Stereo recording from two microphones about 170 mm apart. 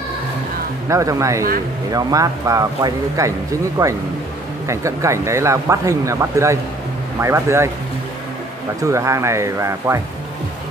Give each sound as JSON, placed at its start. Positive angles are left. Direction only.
{"t": 0.8, "sound": "speech", "side_deg": -20}
{"t": 8.8, "sound": "speech", "side_deg": -15}